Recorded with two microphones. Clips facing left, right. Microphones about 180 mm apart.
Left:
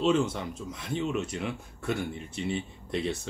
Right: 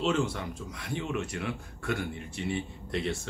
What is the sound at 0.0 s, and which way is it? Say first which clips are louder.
Speech: left 3 dB; 20° left (ahead or behind).